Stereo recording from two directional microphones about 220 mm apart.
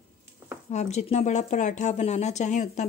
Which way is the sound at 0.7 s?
30° left (ahead or behind).